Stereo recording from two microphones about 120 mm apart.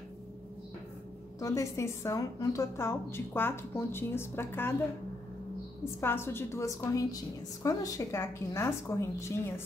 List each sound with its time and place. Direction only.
1.4 s a woman's voice: 25° left (ahead or behind)
5.9 s a woman's voice: 20° left (ahead or behind)